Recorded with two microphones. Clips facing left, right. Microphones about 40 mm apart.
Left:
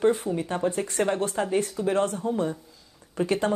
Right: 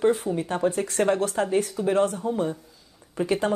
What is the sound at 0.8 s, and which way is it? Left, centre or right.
Speech, right.